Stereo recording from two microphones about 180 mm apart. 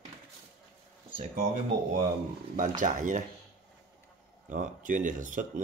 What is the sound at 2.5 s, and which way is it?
Speech, 45° right (ahead or behind).